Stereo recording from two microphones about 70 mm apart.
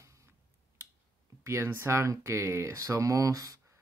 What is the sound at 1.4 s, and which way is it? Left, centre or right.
Speech, right.